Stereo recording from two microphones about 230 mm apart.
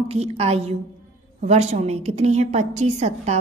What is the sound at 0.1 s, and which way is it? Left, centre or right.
A woman's voice, right.